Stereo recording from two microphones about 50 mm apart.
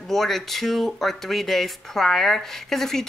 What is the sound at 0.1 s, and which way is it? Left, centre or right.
Speech, centre.